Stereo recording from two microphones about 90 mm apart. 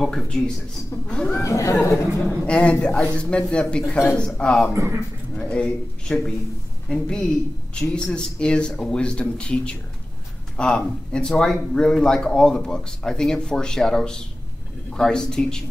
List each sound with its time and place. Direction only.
0.0 s speech: 5° left (ahead or behind)
1.4 s speech: 35° left (ahead or behind)
2.2 s speech: 10° left (ahead or behind)
4.7 s a man's voice: 35° right (ahead or behind)
5.4 s speech: 10° left (ahead or behind)